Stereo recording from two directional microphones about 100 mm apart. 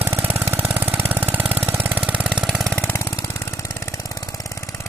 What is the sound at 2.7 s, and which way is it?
Vehicle, 20° left (ahead or behind).